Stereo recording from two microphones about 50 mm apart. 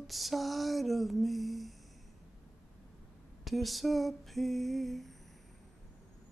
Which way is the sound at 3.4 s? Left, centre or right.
Centre.